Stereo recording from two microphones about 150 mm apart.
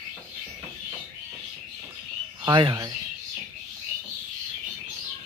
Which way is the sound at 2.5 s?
30° right (ahead or behind).